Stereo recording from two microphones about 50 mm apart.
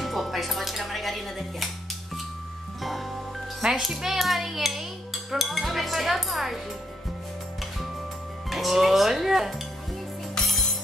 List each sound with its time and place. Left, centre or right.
0.0 s speech: centre
2.8 s music: centre
3.8 s a child's voice: centre
8.5 s speech: centre
10.4 s music: centre